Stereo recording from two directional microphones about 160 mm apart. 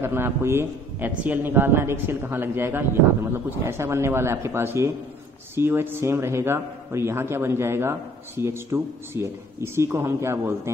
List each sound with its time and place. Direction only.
0.0 s a man's voice: 15° right (ahead or behind)